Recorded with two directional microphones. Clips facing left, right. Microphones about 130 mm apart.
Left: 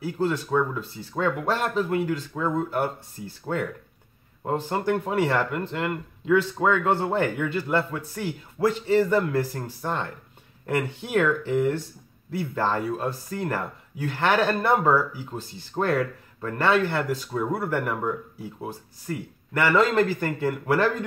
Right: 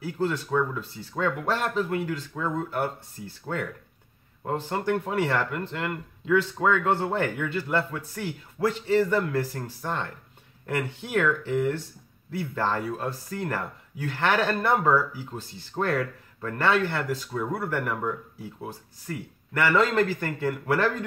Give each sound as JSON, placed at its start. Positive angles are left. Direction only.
{"t": 0.0, "sound": "speech", "side_deg": 15}